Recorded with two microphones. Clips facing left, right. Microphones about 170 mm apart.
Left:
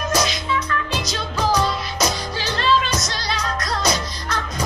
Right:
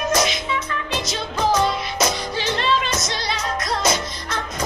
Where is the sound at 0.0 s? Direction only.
20° right (ahead or behind).